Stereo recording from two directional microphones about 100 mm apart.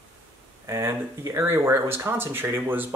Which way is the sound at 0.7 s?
25° right (ahead or behind).